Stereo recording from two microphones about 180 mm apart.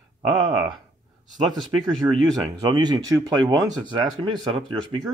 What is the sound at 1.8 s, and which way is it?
Speech, 20° right (ahead or behind).